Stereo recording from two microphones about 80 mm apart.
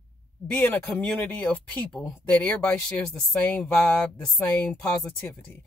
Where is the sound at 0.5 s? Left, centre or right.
Centre.